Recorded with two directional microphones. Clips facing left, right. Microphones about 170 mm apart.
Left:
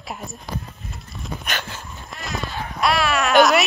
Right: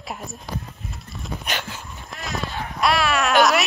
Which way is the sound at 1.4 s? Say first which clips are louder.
Even; 20° right (ahead or behind).